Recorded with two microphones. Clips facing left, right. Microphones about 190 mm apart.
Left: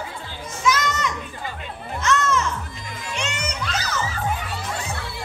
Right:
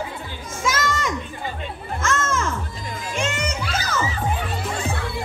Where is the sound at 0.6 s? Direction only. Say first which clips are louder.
Left 1 dB; 50° right (ahead or behind).